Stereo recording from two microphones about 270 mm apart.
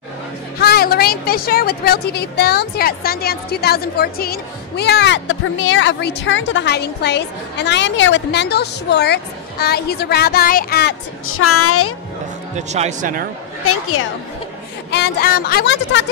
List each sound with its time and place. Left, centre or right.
0.6 s a woman's voice: left
12.5 s speech: right
13.7 s a woman's voice: left
14.9 s a woman's voice: left